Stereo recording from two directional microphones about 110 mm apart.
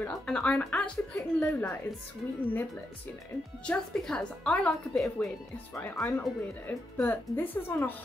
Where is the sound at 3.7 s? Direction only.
5° left (ahead or behind).